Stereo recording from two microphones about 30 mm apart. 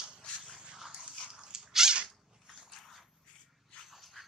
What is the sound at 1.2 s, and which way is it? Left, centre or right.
Dog, right.